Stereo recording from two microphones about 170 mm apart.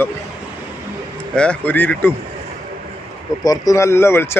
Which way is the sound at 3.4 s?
20° left (ahead or behind).